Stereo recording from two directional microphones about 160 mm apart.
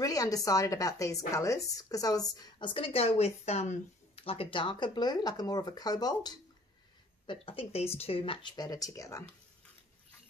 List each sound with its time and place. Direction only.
0.0 s a woman's voice: 20° left (ahead or behind)